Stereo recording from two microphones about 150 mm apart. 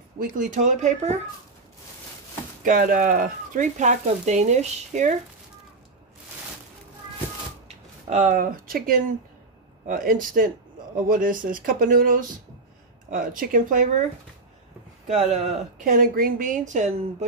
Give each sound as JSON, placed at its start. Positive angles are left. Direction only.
{"t": 0.5, "sound": "speech", "side_deg": -55}
{"t": 2.6, "sound": "speech", "side_deg": -70}
{"t": 7.6, "sound": "speech", "side_deg": -55}
{"t": 15.0, "sound": "speech", "side_deg": -50}
{"t": 15.8, "sound": "speech", "side_deg": -65}